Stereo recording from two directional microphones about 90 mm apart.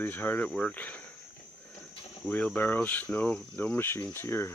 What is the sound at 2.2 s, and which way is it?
Speech, 15° left (ahead or behind).